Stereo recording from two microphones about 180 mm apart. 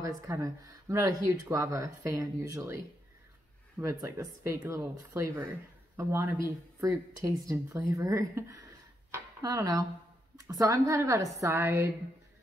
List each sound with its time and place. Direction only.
0.0 s speech: 15° right (ahead or behind)
4.0 s speech: 15° right (ahead or behind)